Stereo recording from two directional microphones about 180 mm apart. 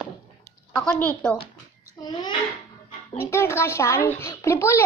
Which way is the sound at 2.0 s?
20° left (ahead or behind).